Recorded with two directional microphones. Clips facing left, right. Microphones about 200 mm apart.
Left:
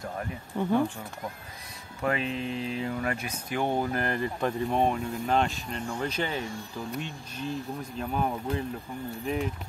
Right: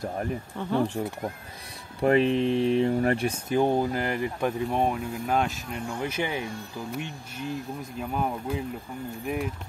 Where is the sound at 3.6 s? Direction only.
10° right (ahead or behind).